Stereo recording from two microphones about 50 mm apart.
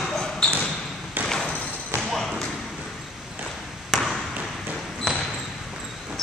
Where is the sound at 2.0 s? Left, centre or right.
Centre.